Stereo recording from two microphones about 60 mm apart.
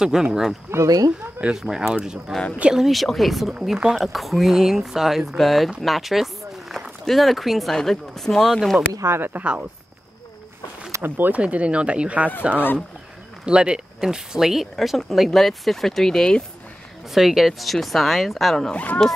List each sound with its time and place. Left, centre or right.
0.0 s speech: centre
0.8 s speech: right
1.4 s speech: centre
3.5 s speech: centre
9.0 s speech: right
9.4 s speech: right
11.0 s speech: right
11.4 s speech: centre
17.1 s speech: centre
18.7 s speech: left